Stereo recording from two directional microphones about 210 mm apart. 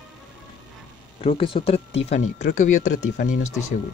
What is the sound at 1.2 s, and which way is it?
Speech, 25° left (ahead or behind).